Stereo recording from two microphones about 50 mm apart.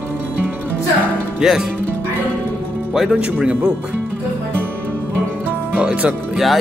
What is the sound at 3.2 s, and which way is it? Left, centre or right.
Speech, centre.